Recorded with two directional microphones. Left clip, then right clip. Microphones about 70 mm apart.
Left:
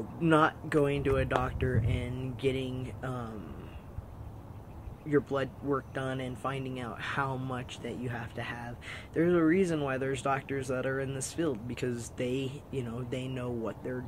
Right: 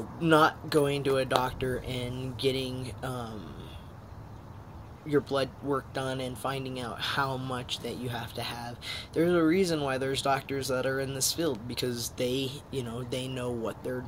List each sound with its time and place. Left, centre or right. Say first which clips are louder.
0.2 s speech: right 3 dB; centre
3.1 s a man's voice: right 2 dB; left
5.1 s speech: right 2 dB; centre
9.3 s speech: right 1 dB; centre
10.1 s speech: right 3 dB; centre